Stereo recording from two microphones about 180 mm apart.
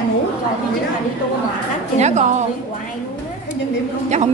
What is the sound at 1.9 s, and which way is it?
Speech, 40° right (ahead or behind).